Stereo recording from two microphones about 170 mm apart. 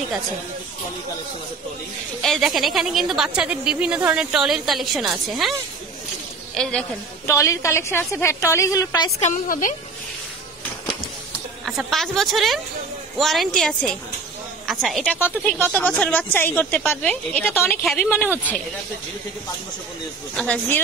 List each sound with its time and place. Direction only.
2.2 s a woman's voice: centre (ahead or behind)
6.5 s a woman's voice: 5° left (ahead or behind)
7.2 s speech: 15° left (ahead or behind)
9.2 s a woman's voice: 50° left (ahead or behind)
11.6 s a woman's voice: centre (ahead or behind)
20.3 s speech: 5° left (ahead or behind)